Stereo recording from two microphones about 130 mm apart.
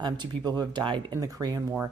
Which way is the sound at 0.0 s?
35° right (ahead or behind).